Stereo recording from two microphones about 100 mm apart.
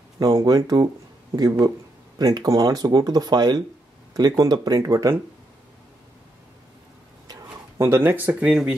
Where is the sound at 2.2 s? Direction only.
35° right (ahead or behind).